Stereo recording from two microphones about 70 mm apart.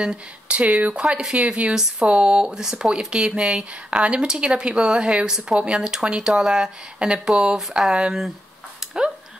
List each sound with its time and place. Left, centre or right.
0.0 s speech: centre